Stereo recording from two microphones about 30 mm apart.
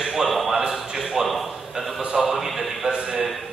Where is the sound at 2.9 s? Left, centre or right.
Right.